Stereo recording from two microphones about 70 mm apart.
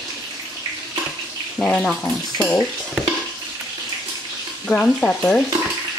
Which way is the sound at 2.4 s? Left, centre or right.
Left.